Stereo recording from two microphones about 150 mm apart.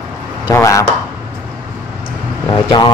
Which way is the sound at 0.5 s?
20° left (ahead or behind).